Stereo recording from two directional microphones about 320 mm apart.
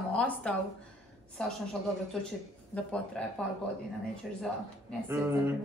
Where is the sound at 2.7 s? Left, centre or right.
Centre.